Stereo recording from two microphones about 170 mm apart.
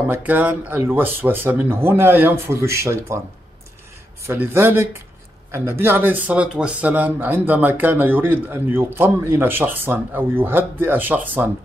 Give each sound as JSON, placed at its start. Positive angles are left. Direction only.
{"t": 0.1, "sound": "speech", "side_deg": -10}
{"t": 4.3, "sound": "speech", "side_deg": -15}